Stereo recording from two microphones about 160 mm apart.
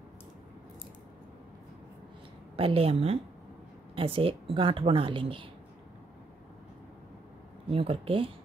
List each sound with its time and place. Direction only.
2.5 s speech: 35° right (ahead or behind)
7.7 s speech: 35° right (ahead or behind)